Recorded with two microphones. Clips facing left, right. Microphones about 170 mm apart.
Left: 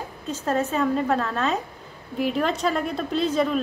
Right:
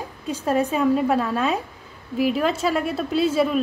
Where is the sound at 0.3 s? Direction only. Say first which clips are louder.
Right 3 dB; 10° right (ahead or behind).